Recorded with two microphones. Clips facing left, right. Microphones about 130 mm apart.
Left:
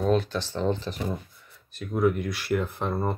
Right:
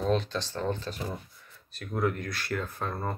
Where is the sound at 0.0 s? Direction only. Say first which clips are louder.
Left 4 dB; 5° left (ahead or behind).